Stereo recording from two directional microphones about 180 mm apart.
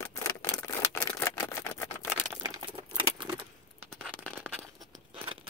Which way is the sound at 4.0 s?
5° left (ahead or behind).